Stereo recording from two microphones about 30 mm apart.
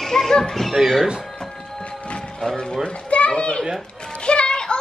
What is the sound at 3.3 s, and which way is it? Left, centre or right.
Speech, left.